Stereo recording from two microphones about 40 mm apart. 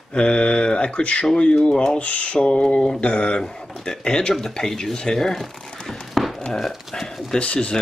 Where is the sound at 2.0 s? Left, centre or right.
Left.